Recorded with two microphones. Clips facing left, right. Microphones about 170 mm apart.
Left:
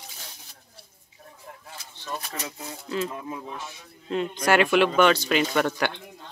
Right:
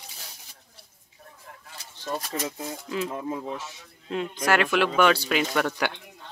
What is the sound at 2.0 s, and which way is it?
Speech, 35° right (ahead or behind).